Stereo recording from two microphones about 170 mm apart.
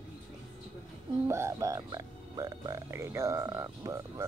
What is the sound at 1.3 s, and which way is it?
Speech, 15° right (ahead or behind).